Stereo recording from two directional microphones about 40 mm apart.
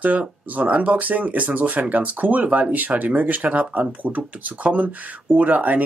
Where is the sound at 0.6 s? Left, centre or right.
Right.